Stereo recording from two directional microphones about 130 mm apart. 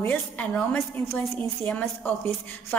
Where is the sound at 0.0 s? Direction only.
15° left (ahead or behind).